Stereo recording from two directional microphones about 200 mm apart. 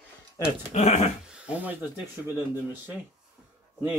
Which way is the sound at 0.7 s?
35° left (ahead or behind).